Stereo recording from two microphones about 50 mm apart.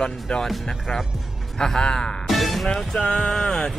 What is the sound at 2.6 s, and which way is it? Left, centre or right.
Speech, centre.